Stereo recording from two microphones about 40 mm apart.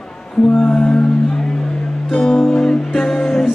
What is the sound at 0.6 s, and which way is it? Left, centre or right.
Music, left.